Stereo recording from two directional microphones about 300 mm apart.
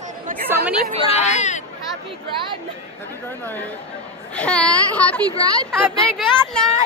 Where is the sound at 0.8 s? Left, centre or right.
Right.